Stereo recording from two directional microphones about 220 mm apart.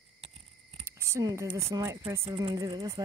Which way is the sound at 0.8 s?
10° right (ahead or behind).